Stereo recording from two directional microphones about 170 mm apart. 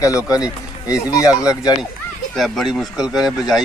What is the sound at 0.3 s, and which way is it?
Speech, 20° left (ahead or behind).